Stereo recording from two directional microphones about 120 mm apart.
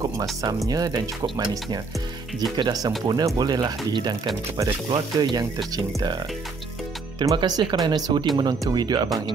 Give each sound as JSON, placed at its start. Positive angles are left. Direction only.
{"t": 0.0, "sound": "speech", "side_deg": -30}
{"t": 1.2, "sound": "speech", "side_deg": -45}
{"t": 2.5, "sound": "speech", "side_deg": -35}